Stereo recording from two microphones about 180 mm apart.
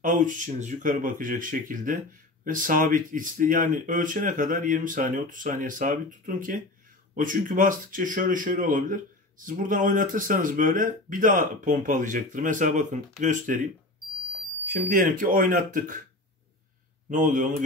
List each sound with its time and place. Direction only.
0.0 s speech: 45° right (ahead or behind)
14.9 s speech: 50° right (ahead or behind)
17.1 s speech: 45° right (ahead or behind)